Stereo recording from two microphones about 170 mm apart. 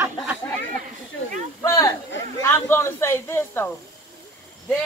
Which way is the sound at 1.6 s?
20° left (ahead or behind).